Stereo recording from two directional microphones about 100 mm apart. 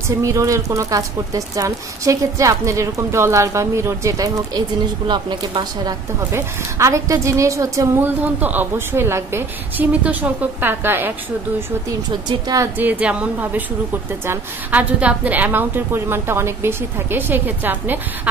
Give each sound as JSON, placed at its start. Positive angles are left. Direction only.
{"t": 0.2, "sound": "speech", "side_deg": -30}
{"t": 6.3, "sound": "speech", "side_deg": -30}
{"t": 8.0, "sound": "a woman's voice", "side_deg": -15}
{"t": 12.3, "sound": "speech", "side_deg": -40}
{"t": 12.7, "sound": "a woman's voice", "side_deg": -15}